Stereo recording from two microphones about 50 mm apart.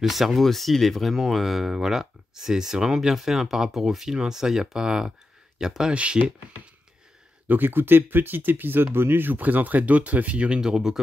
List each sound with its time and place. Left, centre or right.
0.0 s speech: centre
7.4 s speech: right
10.6 s speech: centre